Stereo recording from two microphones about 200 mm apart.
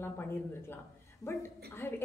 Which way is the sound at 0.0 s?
10° left (ahead or behind).